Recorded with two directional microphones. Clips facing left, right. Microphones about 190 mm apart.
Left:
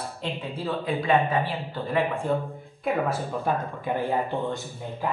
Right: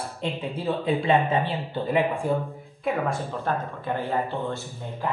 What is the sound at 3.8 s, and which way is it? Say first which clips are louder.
Speech: left 1 dB; 15° left (ahead or behind).